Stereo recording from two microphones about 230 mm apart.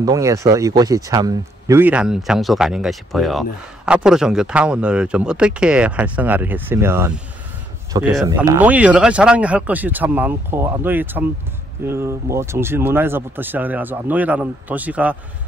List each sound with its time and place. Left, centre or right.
0.0 s speech: centre